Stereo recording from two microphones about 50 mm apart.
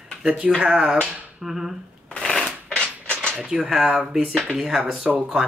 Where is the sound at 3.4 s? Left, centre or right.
Centre.